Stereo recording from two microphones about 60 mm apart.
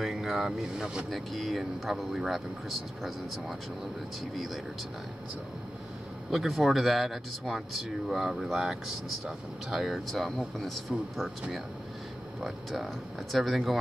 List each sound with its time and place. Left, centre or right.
0.0 s speech: centre
1.1 s speech: centre
6.3 s speech: centre
12.4 s speech: centre